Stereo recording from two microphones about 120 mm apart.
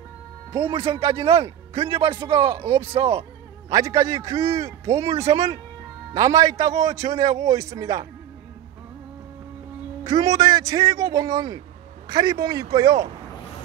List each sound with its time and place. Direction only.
0.5 s a man's voice: 45° right (ahead or behind)
3.7 s speech: 30° right (ahead or behind)
5.1 s speech: 55° right (ahead or behind)
6.1 s a man's voice: 30° right (ahead or behind)
10.0 s a man's voice: 30° right (ahead or behind)